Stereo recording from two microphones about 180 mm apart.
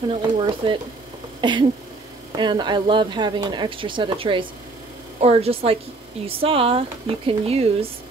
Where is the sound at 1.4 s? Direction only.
25° right (ahead or behind).